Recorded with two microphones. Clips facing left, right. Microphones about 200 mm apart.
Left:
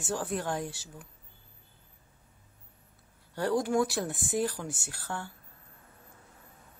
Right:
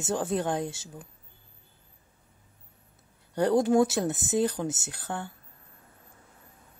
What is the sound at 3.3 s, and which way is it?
Speech, 20° right (ahead or behind).